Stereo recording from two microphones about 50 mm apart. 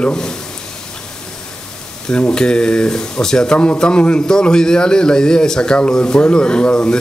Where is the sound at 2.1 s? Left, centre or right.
Centre.